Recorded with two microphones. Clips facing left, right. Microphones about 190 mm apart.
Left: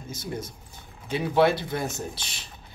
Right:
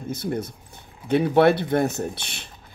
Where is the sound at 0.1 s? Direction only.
60° right (ahead or behind).